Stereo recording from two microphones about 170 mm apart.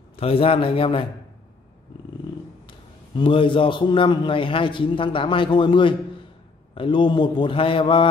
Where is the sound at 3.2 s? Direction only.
30° left (ahead or behind).